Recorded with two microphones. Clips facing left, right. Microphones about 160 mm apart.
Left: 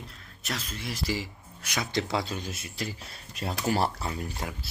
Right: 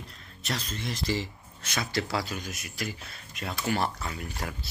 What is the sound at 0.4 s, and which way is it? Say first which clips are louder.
Speech: right 2 dB; 5° left (ahead or behind).